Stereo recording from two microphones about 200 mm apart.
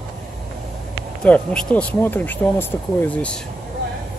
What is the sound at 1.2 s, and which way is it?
Speech, 5° left (ahead or behind).